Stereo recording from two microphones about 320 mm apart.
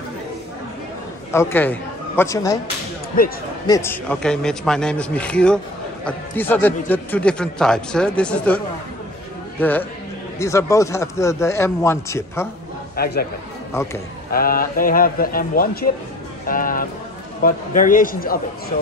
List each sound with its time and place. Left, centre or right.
1.3 s a man's voice: centre
3.6 s a man's voice: centre
9.6 s a man's voice: centre
12.9 s a man's voice: left
14.3 s a man's voice: left
16.4 s music: left
17.4 s a man's voice: left